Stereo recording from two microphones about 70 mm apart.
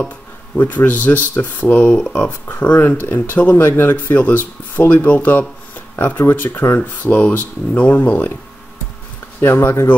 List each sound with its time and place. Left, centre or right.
0.6 s speech: left
9.4 s speech: left